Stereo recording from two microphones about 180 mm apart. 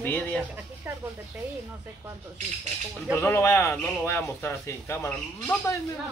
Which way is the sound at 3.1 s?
15° left (ahead or behind).